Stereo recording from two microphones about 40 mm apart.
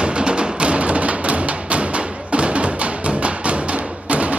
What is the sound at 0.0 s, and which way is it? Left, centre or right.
Music, right.